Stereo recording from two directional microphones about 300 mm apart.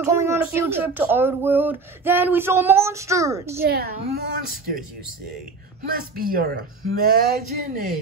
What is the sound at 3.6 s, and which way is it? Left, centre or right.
A woman's voice, right.